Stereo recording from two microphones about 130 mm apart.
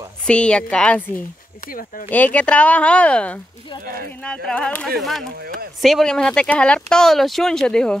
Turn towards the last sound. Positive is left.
turn(degrees=5)  # may be behind; listen again after turning